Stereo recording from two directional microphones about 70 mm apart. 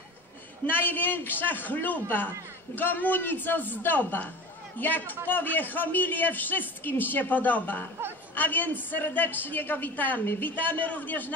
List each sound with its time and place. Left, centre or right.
0.7 s a woman's voice: left